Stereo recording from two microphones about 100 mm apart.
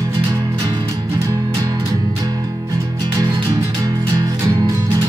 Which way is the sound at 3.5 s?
40° right (ahead or behind).